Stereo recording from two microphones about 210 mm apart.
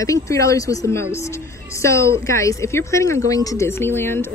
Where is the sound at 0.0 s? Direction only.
15° left (ahead or behind).